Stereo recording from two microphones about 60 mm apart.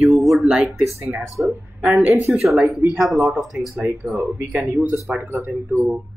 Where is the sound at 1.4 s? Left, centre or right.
Right.